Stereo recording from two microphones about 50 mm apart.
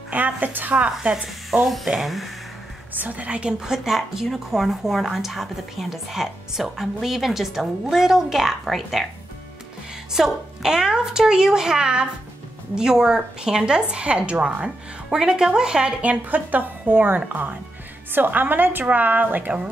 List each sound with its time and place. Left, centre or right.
0.1 s speech: right
1.1 s speech: centre
2.9 s a woman's voice: right; by 9.0 s centre
10.1 s a woman's voice: centre
15.0 s a woman's voice: centre
16.0 s speech: right